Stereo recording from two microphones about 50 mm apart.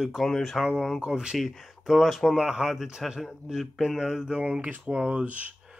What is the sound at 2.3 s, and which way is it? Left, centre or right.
Speech, centre.